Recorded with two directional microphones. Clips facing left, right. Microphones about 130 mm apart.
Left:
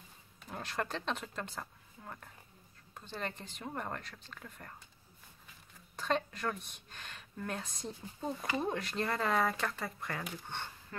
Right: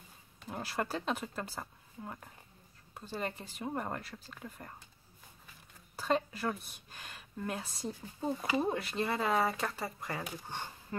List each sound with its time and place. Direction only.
0.4 s speech: 5° right (ahead or behind)
5.9 s speech: 5° right (ahead or behind)
10.9 s speech: 20° right (ahead or behind)